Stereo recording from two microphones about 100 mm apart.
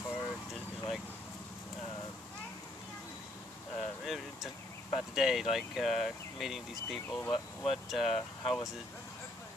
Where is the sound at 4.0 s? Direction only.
Centre (ahead or behind).